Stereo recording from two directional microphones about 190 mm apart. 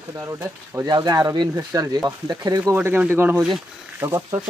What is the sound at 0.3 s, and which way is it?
Speech, 15° right (ahead or behind).